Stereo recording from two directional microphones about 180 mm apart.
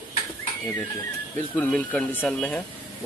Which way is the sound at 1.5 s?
10° left (ahead or behind).